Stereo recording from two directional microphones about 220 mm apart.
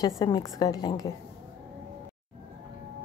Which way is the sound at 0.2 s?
15° left (ahead or behind).